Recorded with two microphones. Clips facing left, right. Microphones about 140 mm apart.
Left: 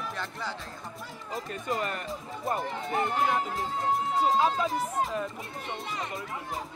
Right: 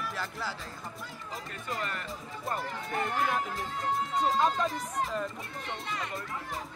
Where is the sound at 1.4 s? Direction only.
25° left (ahead or behind).